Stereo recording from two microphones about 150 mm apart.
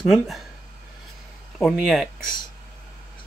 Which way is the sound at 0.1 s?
Centre (ahead or behind).